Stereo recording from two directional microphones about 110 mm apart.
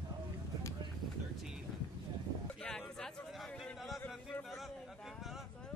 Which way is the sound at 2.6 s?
5° left (ahead or behind).